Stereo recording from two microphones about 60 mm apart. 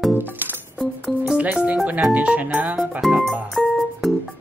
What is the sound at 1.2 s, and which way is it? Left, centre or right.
Speech, right.